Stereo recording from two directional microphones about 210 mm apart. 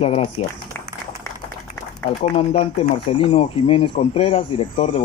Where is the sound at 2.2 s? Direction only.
25° left (ahead or behind).